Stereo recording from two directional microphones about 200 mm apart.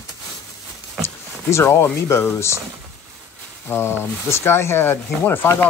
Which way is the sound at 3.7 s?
10° left (ahead or behind).